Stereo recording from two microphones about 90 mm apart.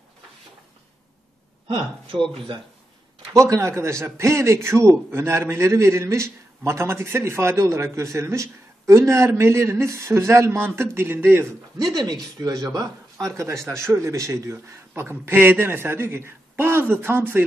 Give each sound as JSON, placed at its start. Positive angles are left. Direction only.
{"t": 3.3, "sound": "a man's voice", "side_deg": -35}
{"t": 11.8, "sound": "a man's voice", "side_deg": -45}